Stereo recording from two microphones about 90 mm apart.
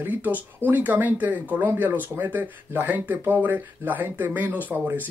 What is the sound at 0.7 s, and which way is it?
Speech, 20° right (ahead or behind).